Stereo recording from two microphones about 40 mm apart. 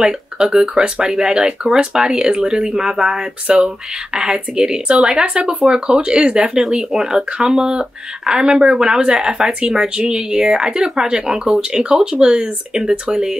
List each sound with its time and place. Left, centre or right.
0.0 s speech: centre
3.4 s speech: right